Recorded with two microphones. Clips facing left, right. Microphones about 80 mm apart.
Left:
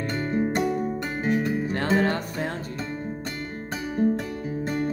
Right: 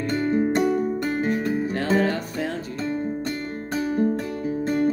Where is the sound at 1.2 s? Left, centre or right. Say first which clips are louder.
Left 3 dB; centre.